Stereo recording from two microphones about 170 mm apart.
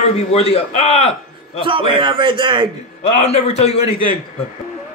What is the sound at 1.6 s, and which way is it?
A man's voice, 30° right (ahead or behind).